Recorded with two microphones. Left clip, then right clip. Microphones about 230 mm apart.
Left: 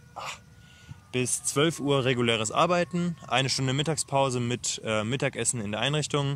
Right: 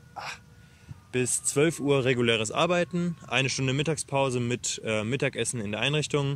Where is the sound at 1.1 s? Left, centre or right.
Centre.